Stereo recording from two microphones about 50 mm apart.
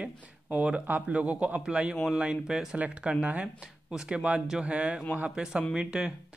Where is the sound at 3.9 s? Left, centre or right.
Centre.